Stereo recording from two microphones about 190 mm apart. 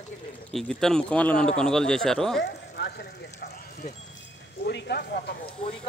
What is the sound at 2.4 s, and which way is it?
Speech, 60° left (ahead or behind).